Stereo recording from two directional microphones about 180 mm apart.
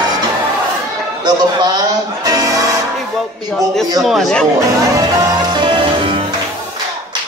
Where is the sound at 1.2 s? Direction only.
25° right (ahead or behind).